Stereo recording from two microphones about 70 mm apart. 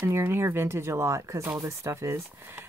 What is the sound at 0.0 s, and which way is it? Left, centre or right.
Speech, right.